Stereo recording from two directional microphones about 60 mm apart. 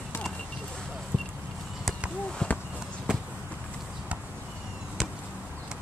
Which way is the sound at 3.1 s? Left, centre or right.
Centre.